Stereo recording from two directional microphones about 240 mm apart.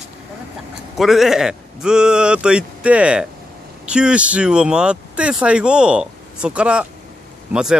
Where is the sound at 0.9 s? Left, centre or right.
Centre.